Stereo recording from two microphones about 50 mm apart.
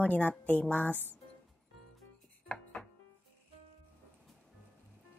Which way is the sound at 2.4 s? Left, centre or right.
Left.